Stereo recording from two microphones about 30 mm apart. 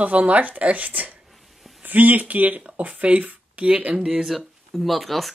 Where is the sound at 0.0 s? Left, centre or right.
Right.